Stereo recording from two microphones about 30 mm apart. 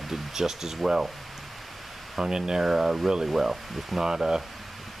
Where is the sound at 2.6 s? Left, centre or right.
Centre.